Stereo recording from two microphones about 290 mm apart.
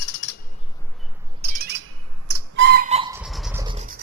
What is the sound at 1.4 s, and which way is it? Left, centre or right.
Squawk, right.